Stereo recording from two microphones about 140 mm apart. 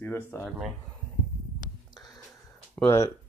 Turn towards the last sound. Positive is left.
turn(degrees=20)  # may be behind; listen again after turning